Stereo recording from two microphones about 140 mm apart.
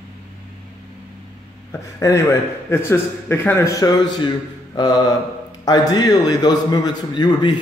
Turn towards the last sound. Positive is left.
turn(degrees=35)  # may be behind; listen again after turning